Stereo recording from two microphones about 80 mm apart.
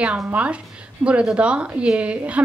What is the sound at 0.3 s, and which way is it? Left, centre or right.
A woman's voice, centre.